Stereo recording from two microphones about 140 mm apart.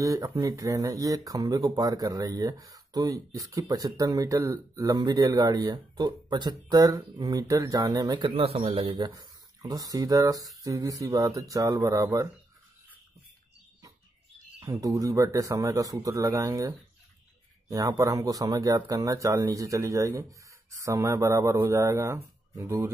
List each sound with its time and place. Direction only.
0.0 s speech: 25° right (ahead or behind)
8.4 s speech: 45° right (ahead or behind); by 12.3 s 25° right (ahead or behind)
14.6 s speech: 20° right (ahead or behind)